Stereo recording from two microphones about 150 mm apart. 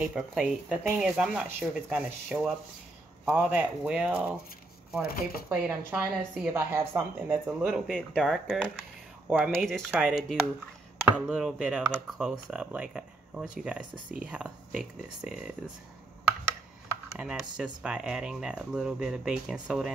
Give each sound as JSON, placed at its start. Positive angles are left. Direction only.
{"t": 0.0, "sound": "speech", "side_deg": -10}
{"t": 5.0, "sound": "speech", "side_deg": 75}
{"t": 5.5, "sound": "speech", "side_deg": -10}
{"t": 7.7, "sound": "speech", "side_deg": 0}
{"t": 9.3, "sound": "speech", "side_deg": -10}
{"t": 11.1, "sound": "speech", "side_deg": -5}
{"t": 17.2, "sound": "speech", "side_deg": -5}